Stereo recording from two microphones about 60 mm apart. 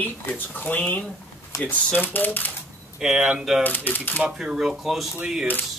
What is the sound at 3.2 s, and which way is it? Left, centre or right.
Speech, centre.